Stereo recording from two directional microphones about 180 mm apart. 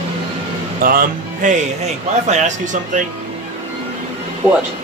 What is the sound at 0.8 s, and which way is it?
Speech, 50° right (ahead or behind).